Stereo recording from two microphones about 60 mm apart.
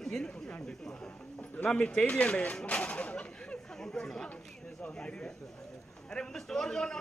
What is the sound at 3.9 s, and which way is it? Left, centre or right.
Speech, centre.